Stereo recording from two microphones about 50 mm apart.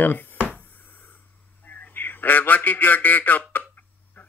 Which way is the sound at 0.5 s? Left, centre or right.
Left.